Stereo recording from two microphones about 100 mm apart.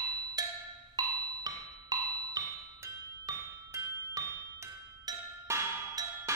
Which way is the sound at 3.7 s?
35° right (ahead or behind).